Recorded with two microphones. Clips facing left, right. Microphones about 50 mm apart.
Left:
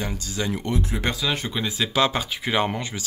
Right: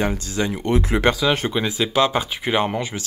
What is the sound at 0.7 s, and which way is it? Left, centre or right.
Speech, right.